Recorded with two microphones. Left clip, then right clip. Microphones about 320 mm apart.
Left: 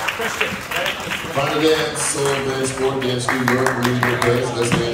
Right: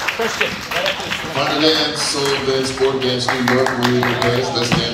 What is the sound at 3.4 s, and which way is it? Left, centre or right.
Speech, right.